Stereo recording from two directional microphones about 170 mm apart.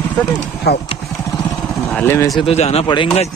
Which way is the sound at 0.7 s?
70° left (ahead or behind).